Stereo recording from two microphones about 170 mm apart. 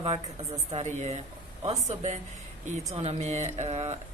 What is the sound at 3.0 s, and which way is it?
A woman's voice, 40° right (ahead or behind).